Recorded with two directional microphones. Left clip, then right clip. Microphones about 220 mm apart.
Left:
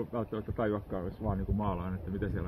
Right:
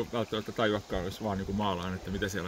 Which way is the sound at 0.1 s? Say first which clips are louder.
Right 3 dB; 20° right (ahead or behind).